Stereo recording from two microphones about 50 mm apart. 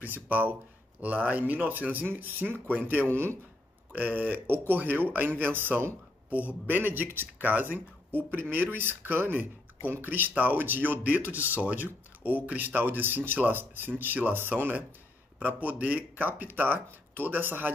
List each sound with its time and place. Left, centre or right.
0.0 s speech: right
3.1 s speech: right
3.9 s speech: right
15.3 s speech: right